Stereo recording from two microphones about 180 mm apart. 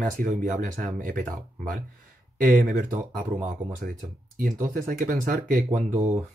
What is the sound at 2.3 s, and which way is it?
Speech, 50° right (ahead or behind).